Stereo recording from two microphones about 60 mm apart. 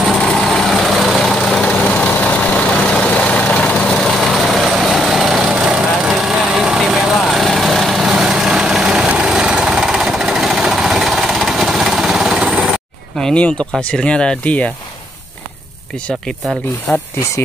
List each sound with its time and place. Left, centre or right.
0.0 s vehicle: centre
1.6 s vehicle: left; by 9.1 s centre
9.2 s jackhammer: centre
13.2 s speech: centre
16.9 s speech: centre